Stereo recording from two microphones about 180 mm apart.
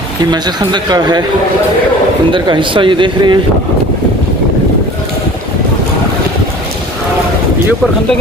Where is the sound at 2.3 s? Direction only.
25° right (ahead or behind).